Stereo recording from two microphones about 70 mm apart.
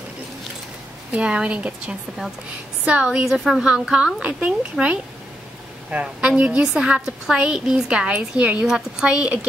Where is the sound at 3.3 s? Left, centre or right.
Centre.